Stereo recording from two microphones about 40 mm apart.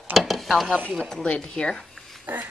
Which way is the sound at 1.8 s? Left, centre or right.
Centre.